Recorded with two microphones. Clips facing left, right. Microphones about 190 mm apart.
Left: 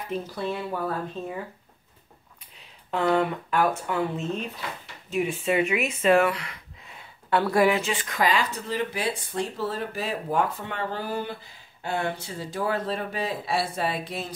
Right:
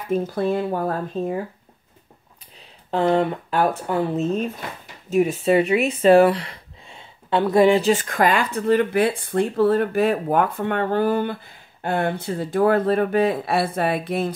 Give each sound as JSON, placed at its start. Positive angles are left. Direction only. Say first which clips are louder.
{"t": 0.1, "sound": "speech", "louder": "right 9 dB", "side_deg": -50}
{"t": 2.9, "sound": "speech", "louder": "right 4 dB", "side_deg": -30}
{"t": 7.9, "sound": "speech", "louder": "right 6 dB", "side_deg": -45}